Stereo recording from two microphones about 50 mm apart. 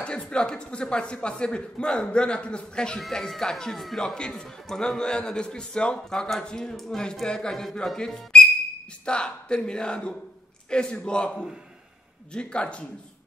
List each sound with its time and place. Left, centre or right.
0.0 s a man's voice: centre